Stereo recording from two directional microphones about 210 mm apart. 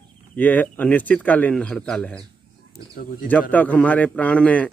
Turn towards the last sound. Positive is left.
turn(degrees=5)  # may be behind; listen again after turning